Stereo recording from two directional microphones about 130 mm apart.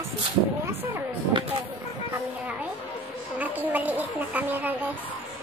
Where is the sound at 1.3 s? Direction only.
40° right (ahead or behind).